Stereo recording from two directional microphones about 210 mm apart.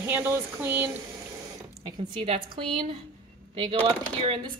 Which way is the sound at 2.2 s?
25° right (ahead or behind).